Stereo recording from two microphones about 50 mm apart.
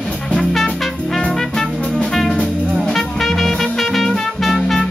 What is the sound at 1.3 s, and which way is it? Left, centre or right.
Music, centre.